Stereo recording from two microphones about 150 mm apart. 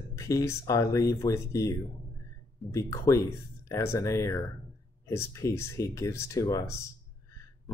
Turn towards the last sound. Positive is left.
turn(degrees=20)  # may be behind; listen again after turning